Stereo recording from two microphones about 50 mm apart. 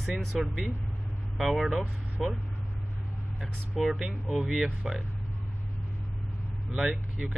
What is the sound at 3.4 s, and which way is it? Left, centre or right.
Speech, centre.